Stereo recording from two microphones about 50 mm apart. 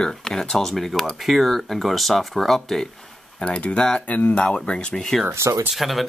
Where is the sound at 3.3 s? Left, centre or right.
Left.